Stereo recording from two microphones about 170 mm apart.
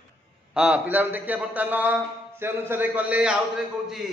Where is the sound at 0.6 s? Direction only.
5° right (ahead or behind).